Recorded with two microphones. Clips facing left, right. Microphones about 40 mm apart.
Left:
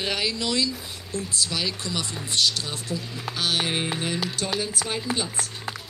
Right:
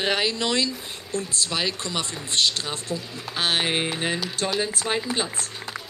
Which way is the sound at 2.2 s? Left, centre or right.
Right.